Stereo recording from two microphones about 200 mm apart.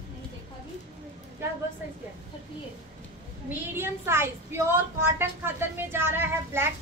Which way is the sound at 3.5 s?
10° right (ahead or behind).